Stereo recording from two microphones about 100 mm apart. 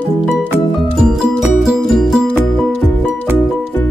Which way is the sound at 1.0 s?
5° right (ahead or behind).